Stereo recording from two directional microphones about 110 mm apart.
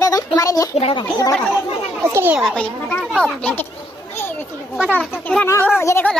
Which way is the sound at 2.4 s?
5° left (ahead or behind).